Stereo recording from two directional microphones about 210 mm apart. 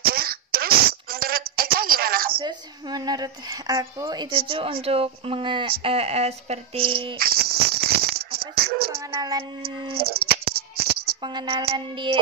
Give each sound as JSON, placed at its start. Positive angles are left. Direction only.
{"t": 0.0, "sound": "a sound", "side_deg": -45}
{"t": 2.3, "sound": "a woman's voice", "side_deg": -20}
{"t": 7.2, "sound": "rattle", "side_deg": -45}
{"t": 9.1, "sound": "speech", "side_deg": -20}
{"t": 9.9, "sound": "music", "side_deg": -45}
{"t": 11.2, "sound": "speech", "side_deg": -25}